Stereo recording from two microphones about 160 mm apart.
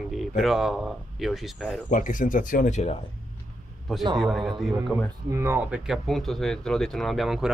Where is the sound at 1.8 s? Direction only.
55° left (ahead or behind).